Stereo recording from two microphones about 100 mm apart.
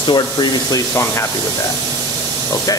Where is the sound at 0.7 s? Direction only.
30° left (ahead or behind).